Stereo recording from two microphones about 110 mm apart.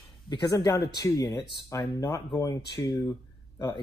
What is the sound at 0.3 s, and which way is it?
Speech, 40° left (ahead or behind).